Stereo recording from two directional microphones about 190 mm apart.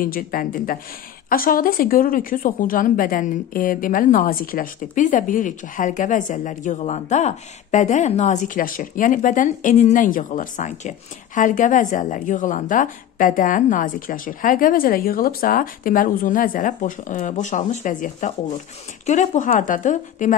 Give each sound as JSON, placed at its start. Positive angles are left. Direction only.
{"t": 0.0, "sound": "speech", "side_deg": 50}